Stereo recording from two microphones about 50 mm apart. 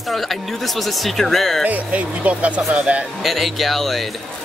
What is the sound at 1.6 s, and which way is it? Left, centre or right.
Speech, right.